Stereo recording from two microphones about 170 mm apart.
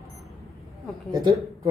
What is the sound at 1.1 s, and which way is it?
Speech, 20° right (ahead or behind).